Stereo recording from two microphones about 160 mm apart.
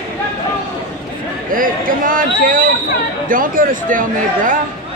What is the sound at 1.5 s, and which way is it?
Speech, 60° right (ahead or behind).